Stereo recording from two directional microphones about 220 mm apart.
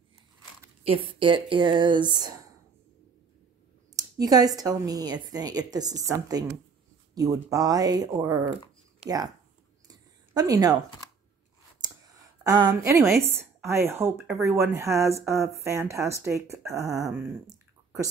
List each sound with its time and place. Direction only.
0.8 s speech: 25° right (ahead or behind)
3.9 s a woman's voice: 15° right (ahead or behind)
9.8 s a sound: 15° right (ahead or behind)
12.4 s a woman's voice: 20° right (ahead or behind)